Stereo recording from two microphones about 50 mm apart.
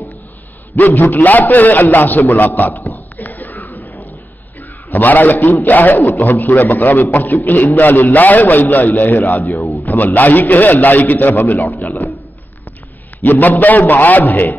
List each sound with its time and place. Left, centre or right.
0.7 s a man's voice: left
3.2 s a sound: left
4.9 s a man's voice: left
13.2 s a man's voice: left